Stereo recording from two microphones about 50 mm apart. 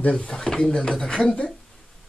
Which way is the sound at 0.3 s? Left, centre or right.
Centre.